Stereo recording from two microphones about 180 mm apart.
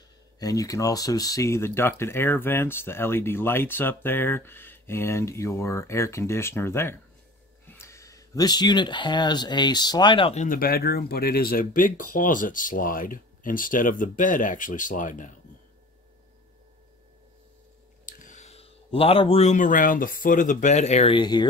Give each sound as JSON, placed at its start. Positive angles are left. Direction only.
{"t": 0.4, "sound": "speech", "side_deg": 20}
{"t": 10.4, "sound": "speech", "side_deg": 50}
{"t": 18.0, "sound": "speech", "side_deg": 45}